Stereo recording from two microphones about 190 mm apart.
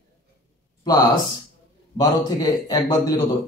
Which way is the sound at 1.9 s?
20° left (ahead or behind).